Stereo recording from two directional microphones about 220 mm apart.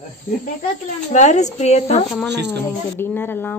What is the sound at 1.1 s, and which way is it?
Speech, 30° left (ahead or behind).